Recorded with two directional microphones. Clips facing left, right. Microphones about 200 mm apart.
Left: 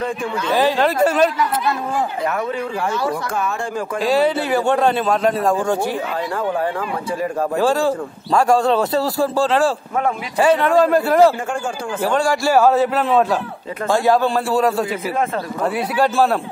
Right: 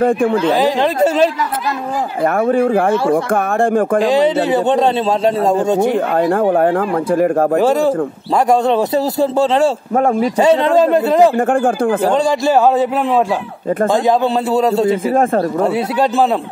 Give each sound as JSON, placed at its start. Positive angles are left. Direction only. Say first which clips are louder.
{"t": 0.0, "sound": "speech", "louder": "right 10 dB", "side_deg": -50}
{"t": 0.6, "sound": "speech", "louder": "right 2 dB", "side_deg": -15}
{"t": 2.2, "sound": "speech", "louder": "right 9 dB", "side_deg": -50}
{"t": 4.0, "sound": "a man's voice", "louder": "right 4 dB", "side_deg": -20}
{"t": 6.1, "sound": "speech", "louder": "right 9 dB", "side_deg": -55}
{"t": 7.5, "sound": "a man's voice", "louder": "right 4 dB", "side_deg": -20}
{"t": 9.9, "sound": "speech", "louder": "right 8 dB", "side_deg": -40}
{"t": 10.4, "sound": "a man's voice", "louder": "right 2 dB", "side_deg": -25}
{"t": 11.3, "sound": "speech", "louder": "right 10 dB", "side_deg": -55}
{"t": 12.1, "sound": "a man's voice", "louder": "right 3 dB", "side_deg": -20}